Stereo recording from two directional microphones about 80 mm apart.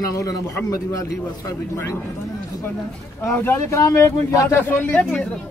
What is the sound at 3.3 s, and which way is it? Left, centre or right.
Speech, left.